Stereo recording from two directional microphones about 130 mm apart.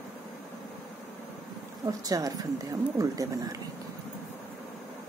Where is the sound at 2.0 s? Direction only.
25° right (ahead or behind).